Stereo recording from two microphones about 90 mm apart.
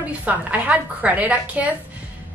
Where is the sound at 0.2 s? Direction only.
15° right (ahead or behind).